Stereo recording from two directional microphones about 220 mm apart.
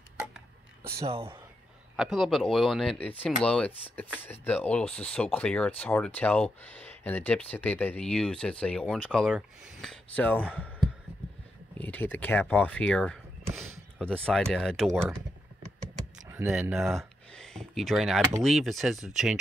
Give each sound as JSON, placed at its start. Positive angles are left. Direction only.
{"t": 1.0, "sound": "speech", "side_deg": -25}
{"t": 2.0, "sound": "speech", "side_deg": 0}
{"t": 11.8, "sound": "speech", "side_deg": 10}
{"t": 16.3, "sound": "speech", "side_deg": -10}
{"t": 17.3, "sound": "a sound", "side_deg": 5}
{"t": 18.4, "sound": "speech", "side_deg": 0}